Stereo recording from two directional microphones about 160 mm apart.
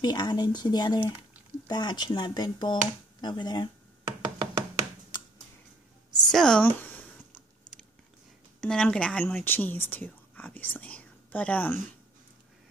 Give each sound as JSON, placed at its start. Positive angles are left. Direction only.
{"t": 0.0, "sound": "speech", "side_deg": 25}
{"t": 4.2, "sound": "knock", "side_deg": -20}
{"t": 5.1, "sound": "finger snapping", "side_deg": 25}
{"t": 6.1, "sound": "a sound", "side_deg": 5}
{"t": 8.5, "sound": "speech", "side_deg": 5}